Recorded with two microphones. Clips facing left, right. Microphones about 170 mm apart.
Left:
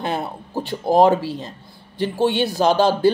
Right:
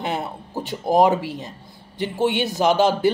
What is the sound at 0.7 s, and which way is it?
Speech, 20° right (ahead or behind).